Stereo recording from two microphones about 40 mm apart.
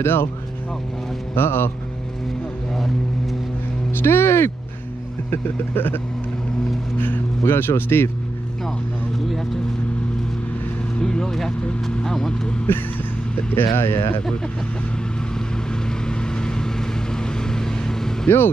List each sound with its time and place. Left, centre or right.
0.0 s speech: left
1.3 s speech: left
2.7 s vehicle: centre
3.9 s speech: left
5.3 s vehicle: left
7.4 s speech: left
11.0 s speech: centre
13.6 s speech: left
15.3 s vehicle: centre